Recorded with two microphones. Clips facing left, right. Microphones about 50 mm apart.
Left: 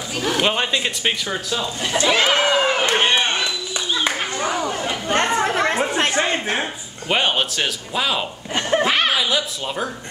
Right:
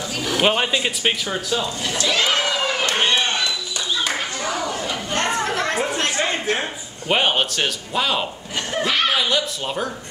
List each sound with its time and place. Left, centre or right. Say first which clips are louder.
0.4 s speech: right 3 dB; centre
2.0 s a sound: left 4 dB; left
4.0 s clapping: left 3 dB; left
5.3 s chatter: left 3 dB; centre
7.1 s speech: right 1 dB; centre
8.5 s chuckle: left 3 dB; left
9.1 s speech: even; centre